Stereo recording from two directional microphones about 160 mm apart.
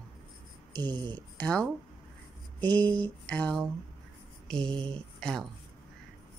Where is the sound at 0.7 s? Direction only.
25° right (ahead or behind).